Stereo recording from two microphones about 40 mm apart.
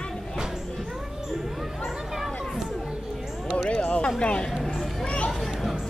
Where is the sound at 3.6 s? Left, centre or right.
Left.